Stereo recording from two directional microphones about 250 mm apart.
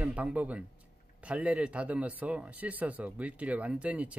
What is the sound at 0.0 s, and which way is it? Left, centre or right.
Speech, centre.